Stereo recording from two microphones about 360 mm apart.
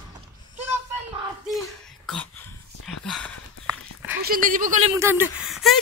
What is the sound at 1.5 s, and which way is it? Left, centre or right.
Throat clearing, centre.